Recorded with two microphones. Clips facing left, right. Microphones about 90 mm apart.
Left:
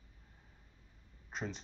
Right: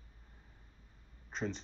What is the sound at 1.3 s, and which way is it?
Speech, 5° left (ahead or behind).